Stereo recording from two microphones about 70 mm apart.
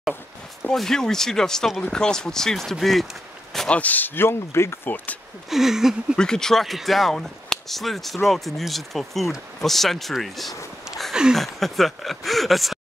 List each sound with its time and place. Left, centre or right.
0.7 s speech: centre
3.5 s speech: centre; by 4.9 s left
5.5 s speech: centre
6.1 s speech: centre
10.9 s a sound: centre
11.3 s speech: centre